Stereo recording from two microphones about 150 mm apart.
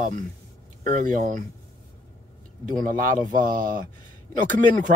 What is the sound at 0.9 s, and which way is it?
Speech, 60° right (ahead or behind).